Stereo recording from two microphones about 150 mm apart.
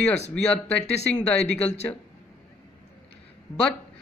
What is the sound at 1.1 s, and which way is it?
Speech, 10° left (ahead or behind).